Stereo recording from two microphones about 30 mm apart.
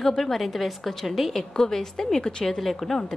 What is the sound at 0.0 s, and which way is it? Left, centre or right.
Speech, centre.